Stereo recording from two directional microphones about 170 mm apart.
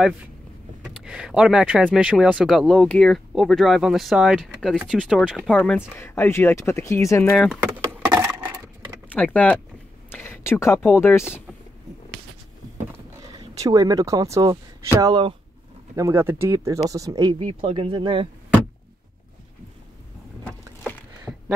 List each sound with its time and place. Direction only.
0.8 s speech: 5° right (ahead or behind)
5.8 s speech: 15° left (ahead or behind)
7.6 s a sound: 10° right (ahead or behind)
9.1 s speech: 10° left (ahead or behind)
13.4 s speech: 20° right (ahead or behind)
21.3 s a sound: centre (ahead or behind)